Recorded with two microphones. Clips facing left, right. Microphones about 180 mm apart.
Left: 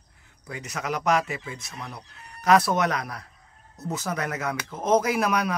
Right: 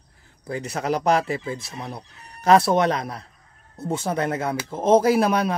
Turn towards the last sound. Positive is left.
turn(degrees=-30)  # may be behind; listen again after turning